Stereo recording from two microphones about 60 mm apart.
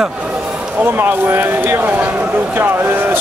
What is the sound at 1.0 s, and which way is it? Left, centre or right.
Speech, right.